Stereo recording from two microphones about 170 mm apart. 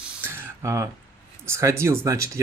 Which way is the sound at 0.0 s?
10° right (ahead or behind).